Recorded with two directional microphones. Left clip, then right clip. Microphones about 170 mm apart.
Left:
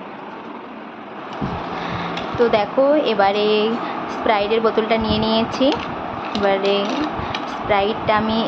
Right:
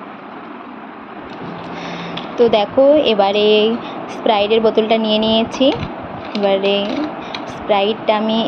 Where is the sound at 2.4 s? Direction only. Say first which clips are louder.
Right 4 dB; 35° right (ahead or behind).